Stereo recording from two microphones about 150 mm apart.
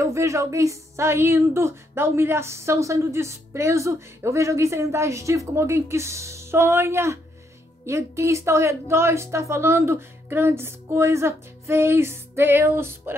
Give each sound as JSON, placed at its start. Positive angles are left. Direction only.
{"t": 0.0, "sound": "a woman's voice", "side_deg": -20}